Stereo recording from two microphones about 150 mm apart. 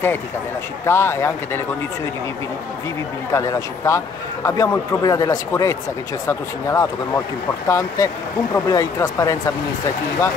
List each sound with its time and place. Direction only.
0.8 s speech: 15° left (ahead or behind)
3.3 s speech: 20° left (ahead or behind)